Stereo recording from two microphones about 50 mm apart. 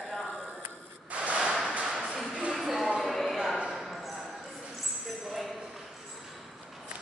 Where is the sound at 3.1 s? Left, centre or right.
Centre.